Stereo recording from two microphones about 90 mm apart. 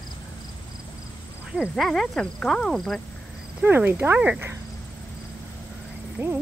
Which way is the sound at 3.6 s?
20° right (ahead or behind).